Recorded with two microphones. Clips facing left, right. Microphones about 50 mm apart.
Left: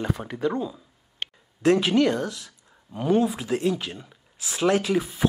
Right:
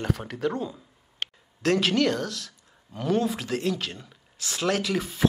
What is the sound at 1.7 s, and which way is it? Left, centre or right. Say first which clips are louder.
A man's voice: left 3 dB; centre.